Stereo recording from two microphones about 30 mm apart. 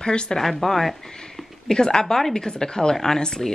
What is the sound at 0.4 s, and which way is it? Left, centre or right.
Speech, centre.